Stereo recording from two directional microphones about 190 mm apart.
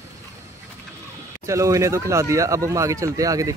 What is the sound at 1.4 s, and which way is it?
Speech, 15° right (ahead or behind).